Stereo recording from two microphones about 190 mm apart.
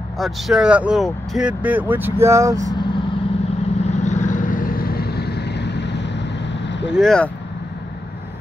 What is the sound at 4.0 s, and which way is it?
Vehicle, 40° left (ahead or behind).